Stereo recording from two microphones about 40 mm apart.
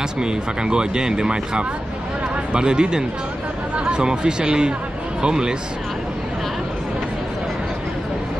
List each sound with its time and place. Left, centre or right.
0.2 s speech: right